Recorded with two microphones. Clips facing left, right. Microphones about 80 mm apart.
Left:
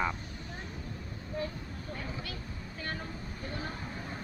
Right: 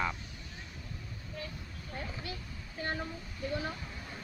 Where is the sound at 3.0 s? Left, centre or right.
Left.